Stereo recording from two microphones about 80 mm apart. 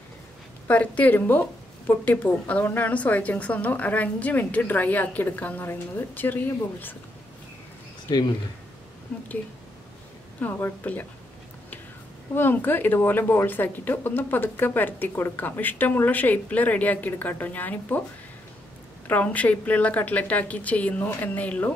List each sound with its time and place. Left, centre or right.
0.7 s speech: centre
10.4 s speech: left
12.4 s speech: left
19.0 s speech: centre